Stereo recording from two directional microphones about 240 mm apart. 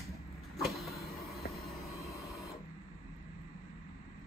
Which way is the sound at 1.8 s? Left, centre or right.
Centre.